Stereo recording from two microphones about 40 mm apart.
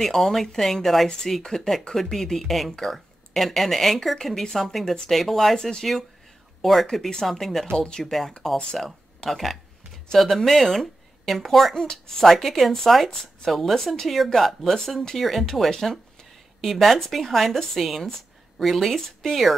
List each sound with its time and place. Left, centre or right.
0.0 s a woman's voice: centre
1.4 s a woman's voice: centre
1.7 s speech: centre
5.6 s speech: centre
6.6 s speech: centre
7.7 s speech: left
8.0 s a woman's voice: centre